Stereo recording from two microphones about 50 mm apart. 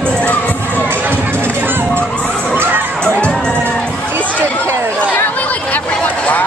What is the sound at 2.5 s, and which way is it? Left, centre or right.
Crowd, right.